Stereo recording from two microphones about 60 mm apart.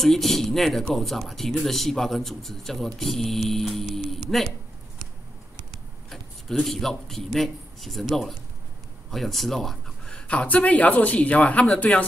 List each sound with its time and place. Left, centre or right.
0.0 s a man's voice: centre
6.6 s a man's voice: centre; by 12.1 s left